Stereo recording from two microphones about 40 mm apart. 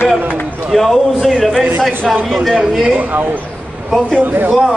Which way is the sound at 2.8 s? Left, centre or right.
Right.